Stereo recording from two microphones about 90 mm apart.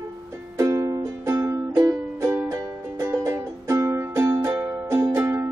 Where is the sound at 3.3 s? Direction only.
35° right (ahead or behind).